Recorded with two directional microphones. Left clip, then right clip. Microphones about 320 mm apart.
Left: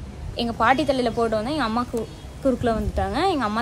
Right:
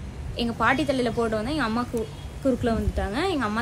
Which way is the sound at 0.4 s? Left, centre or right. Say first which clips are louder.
Left 3 dB; centre.